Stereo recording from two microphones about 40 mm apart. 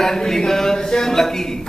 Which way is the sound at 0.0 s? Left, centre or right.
Centre.